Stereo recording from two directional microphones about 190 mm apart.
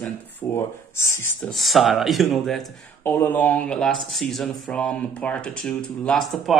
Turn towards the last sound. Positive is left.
turn(degrees=0)  # may be behind; listen again after turning